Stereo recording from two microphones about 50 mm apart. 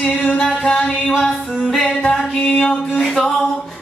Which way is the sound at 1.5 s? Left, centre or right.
Centre.